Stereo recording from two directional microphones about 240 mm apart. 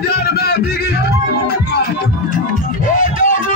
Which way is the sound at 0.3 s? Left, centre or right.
Left.